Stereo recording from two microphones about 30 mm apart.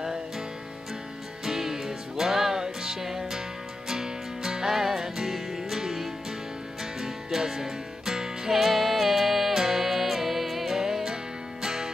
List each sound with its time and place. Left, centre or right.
1.4 s music: centre
2.6 s music: right; by 10.7 s centre
10.7 s music: centre